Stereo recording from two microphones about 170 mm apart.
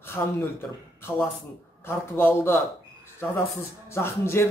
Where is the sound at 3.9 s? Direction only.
15° left (ahead or behind).